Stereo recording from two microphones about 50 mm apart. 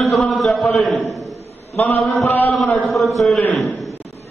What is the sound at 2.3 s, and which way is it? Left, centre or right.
Speech, left.